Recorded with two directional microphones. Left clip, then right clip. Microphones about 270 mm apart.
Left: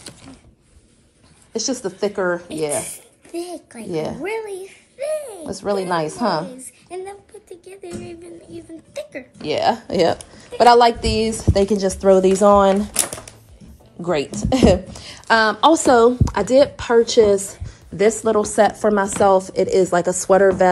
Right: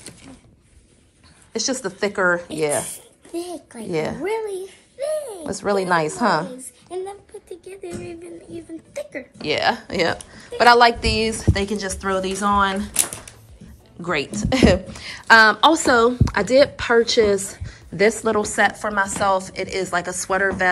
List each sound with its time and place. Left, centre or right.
1.5 s a woman's voice: centre
2.6 s a woman's voice: centre
3.9 s a woman's voice: centre
4.5 s a sound: centre
5.4 s a woman's voice: centre
6.4 s a woman's voice: centre
9.4 s a woman's voice: centre
12.9 s typewriter: centre
14.0 s a woman's voice: centre
17.5 s a sound: centre
18.2 s a woman's voice: centre